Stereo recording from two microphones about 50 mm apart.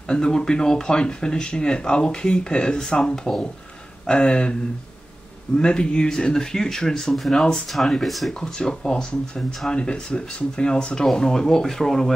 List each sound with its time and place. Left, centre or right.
0.1 s speech: centre
5.6 s speech: centre
8.4 s speech: centre